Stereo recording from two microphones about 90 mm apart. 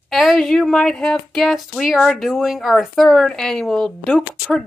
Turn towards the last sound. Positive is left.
turn(degrees=5)  # may be behind; listen again after turning